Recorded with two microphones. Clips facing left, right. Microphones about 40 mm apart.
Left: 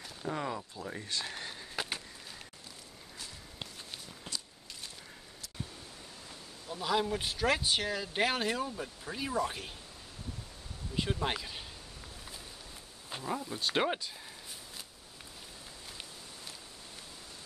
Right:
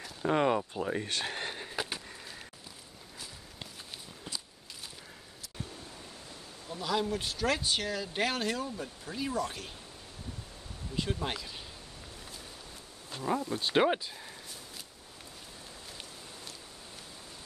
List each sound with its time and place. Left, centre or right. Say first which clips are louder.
0.3 s speech: right 9 dB; right
1.8 s a sound: even; centre
6.7 s speech: even; centre
11.0 s speech: left 1 dB; centre
13.2 s speech: right 4 dB; centre